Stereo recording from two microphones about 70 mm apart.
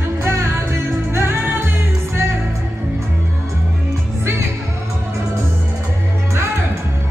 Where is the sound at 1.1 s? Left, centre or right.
Right.